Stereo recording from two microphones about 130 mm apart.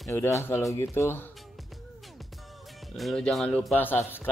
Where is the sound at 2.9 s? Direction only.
5° left (ahead or behind).